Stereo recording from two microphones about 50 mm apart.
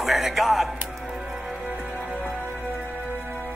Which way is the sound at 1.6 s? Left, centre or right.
Right.